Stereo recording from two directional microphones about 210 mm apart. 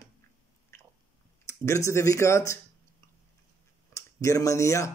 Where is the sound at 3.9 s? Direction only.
15° left (ahead or behind).